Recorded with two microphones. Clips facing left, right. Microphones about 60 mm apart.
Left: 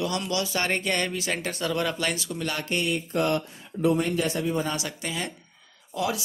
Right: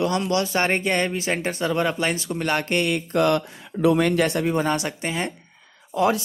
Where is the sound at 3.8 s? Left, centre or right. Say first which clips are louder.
Right 5 dB; right.